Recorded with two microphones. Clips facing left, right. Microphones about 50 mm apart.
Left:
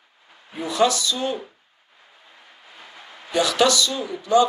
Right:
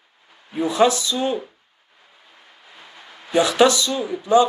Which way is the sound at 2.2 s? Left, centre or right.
Left.